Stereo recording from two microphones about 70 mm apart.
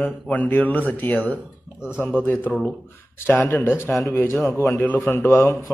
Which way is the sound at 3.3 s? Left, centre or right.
Left.